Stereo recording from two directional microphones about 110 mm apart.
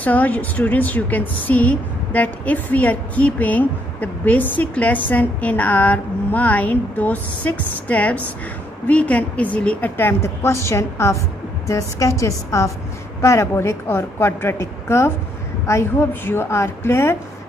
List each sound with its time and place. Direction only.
0.0 s a woman's voice: 15° left (ahead or behind)